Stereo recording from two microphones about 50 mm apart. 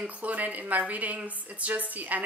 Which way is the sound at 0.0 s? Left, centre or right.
Right.